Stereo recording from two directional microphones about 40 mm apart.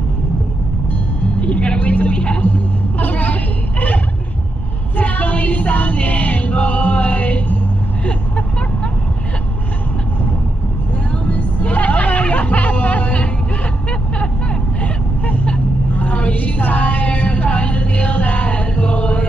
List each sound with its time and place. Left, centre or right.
1.4 s a woman's voice: left
3.0 s a sound: left
4.9 s music: left
11.2 s music: left
14.8 s vehicle: left
15.9 s a sound: left